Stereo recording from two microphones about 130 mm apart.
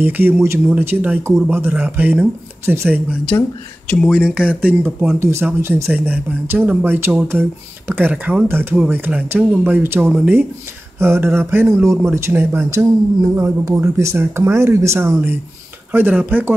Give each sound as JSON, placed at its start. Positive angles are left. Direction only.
{"t": 0.0, "sound": "speech", "side_deg": -15}
{"t": 3.3, "sound": "speech", "side_deg": 20}
{"t": 3.9, "sound": "speech", "side_deg": 0}